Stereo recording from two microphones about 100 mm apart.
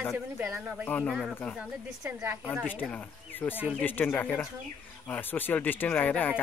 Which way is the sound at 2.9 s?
20° left (ahead or behind).